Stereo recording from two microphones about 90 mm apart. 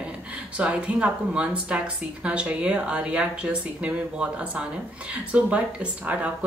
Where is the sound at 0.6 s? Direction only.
15° right (ahead or behind).